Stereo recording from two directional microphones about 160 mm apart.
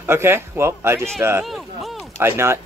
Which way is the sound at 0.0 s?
15° right (ahead or behind).